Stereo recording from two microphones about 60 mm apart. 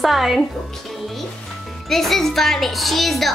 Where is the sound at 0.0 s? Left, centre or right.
Centre.